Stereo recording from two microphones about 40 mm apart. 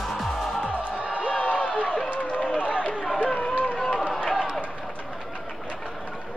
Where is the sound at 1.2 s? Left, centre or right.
Left.